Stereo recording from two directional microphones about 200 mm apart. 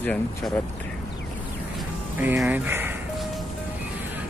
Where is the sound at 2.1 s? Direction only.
10° right (ahead or behind).